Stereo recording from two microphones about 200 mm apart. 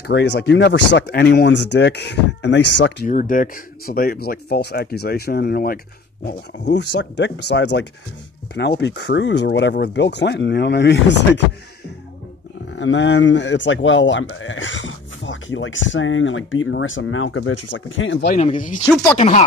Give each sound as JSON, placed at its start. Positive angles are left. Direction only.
{"t": 0.0, "sound": "speech", "side_deg": 60}
{"t": 3.1, "sound": "speech", "side_deg": 40}
{"t": 12.7, "sound": "speech", "side_deg": 65}
{"t": 19.1, "sound": "speech", "side_deg": 30}